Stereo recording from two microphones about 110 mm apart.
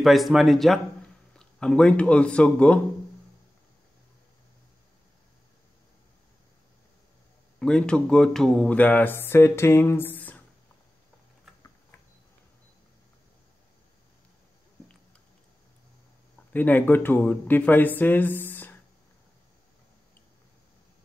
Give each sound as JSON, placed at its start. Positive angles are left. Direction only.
{"t": 0.0, "sound": "a man's voice", "side_deg": 0}
{"t": 7.5, "sound": "speech", "side_deg": 5}
{"t": 16.5, "sound": "speech", "side_deg": 15}